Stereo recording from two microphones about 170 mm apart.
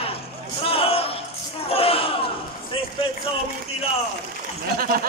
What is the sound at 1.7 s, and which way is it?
Crowd, 35° left (ahead or behind).